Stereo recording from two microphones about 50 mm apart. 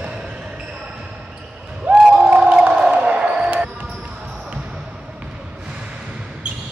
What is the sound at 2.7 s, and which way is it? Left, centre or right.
Basketball bounce, centre.